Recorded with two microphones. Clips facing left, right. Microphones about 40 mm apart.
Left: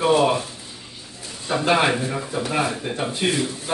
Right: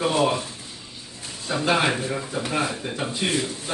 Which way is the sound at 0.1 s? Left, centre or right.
Left.